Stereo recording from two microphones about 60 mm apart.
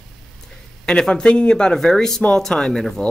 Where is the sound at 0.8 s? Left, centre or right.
Centre.